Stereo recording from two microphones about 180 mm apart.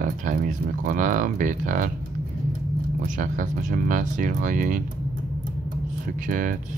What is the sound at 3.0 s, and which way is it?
Speech, 45° right (ahead or behind).